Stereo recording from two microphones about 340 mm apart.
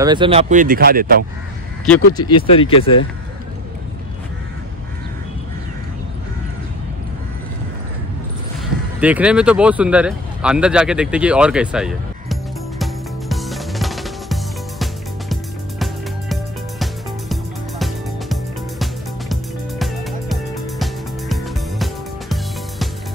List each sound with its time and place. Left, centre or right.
0.0 s speech: centre
1.9 s speech: centre
9.0 s a sound: centre
16.8 s music: centre